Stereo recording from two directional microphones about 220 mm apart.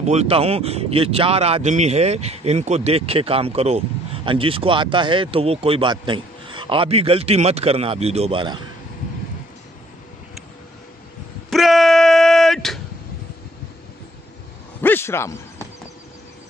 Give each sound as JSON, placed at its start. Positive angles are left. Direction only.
{"t": 0.0, "sound": "speech", "side_deg": -30}
{"t": 11.5, "sound": "a sound", "side_deg": 0}
{"t": 14.8, "sound": "a man's voice", "side_deg": 10}